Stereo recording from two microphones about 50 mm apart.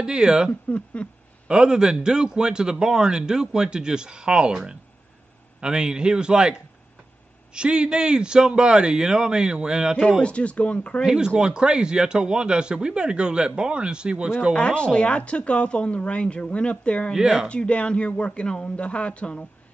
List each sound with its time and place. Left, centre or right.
0.0 s a man's voice: centre
0.5 s speech: left
1.5 s a man's voice: centre
10.2 s speech: left
11.1 s a man's voice: centre
14.5 s speech: left
17.1 s a man's voice: centre
17.5 s speech: left